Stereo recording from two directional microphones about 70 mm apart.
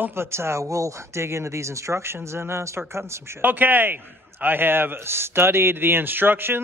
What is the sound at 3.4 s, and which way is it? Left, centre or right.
Speech, right.